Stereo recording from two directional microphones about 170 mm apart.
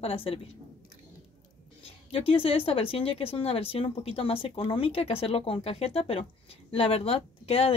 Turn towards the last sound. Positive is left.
turn(degrees=35)  # may be behind; listen again after turning